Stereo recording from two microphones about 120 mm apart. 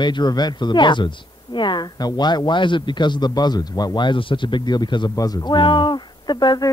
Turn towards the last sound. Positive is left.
turn(degrees=35)  # may be behind; listen again after turning